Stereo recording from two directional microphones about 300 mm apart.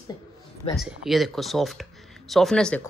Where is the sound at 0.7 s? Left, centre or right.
Centre.